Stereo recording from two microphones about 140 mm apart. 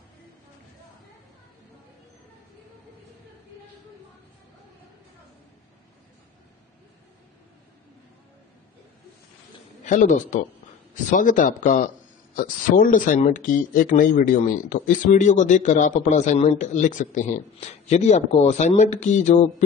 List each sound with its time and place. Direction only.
9.8 s a man's voice: 65° left (ahead or behind)
12.4 s speech: 85° left; by 19.5 s 55° left (ahead or behind)